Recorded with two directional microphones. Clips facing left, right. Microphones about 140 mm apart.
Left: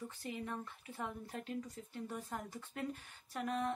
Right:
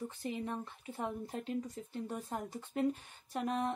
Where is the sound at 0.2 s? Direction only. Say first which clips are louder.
Right 4 dB; 25° right (ahead or behind).